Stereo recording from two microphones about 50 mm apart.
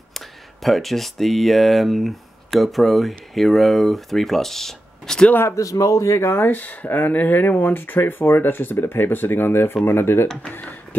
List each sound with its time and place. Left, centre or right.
0.1 s speech: centre
5.5 s speech: left
6.4 s speech: left